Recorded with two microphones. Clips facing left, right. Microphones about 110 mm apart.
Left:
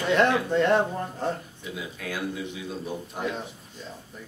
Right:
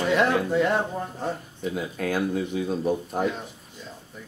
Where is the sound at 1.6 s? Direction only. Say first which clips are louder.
Right 8 dB; 45° right (ahead or behind).